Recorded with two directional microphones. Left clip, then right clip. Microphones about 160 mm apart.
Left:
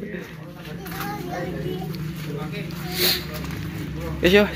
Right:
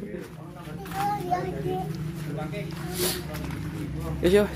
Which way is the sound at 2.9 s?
25° right (ahead or behind).